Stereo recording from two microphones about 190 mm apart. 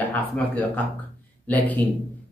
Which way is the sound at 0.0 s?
10° left (ahead or behind).